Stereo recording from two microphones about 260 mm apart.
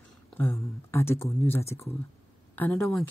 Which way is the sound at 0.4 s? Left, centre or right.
Centre.